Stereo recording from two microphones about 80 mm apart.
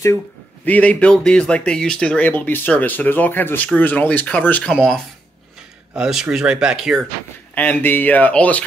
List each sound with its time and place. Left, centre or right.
0.7 s speech: centre
5.9 s speech: centre
7.5 s speech: left